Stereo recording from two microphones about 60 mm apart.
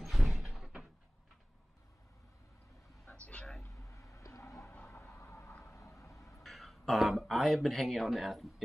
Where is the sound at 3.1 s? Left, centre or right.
Left.